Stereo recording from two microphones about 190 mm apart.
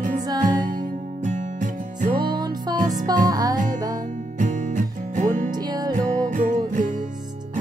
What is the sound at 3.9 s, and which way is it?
Music, 40° right (ahead or behind).